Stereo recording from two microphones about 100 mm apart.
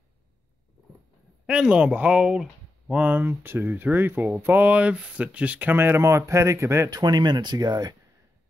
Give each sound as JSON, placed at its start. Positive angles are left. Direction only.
{"t": 1.4, "sound": "speech", "side_deg": -10}
{"t": 7.0, "sound": "speech", "side_deg": -45}